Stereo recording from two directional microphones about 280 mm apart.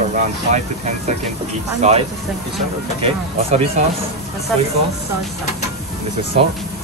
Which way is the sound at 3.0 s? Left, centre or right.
Right.